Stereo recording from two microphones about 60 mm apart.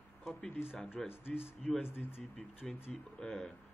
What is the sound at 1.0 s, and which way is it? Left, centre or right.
A man's voice, left.